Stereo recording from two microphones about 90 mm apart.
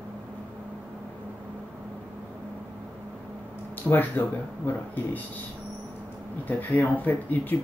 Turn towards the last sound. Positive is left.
turn(degrees=20)  # may be behind; listen again after turning